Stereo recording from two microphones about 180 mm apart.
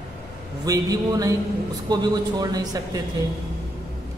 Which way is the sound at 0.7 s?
20° right (ahead or behind).